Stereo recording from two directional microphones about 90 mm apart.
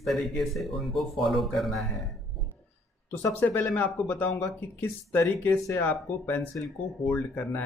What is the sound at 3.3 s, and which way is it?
Speech, 20° left (ahead or behind).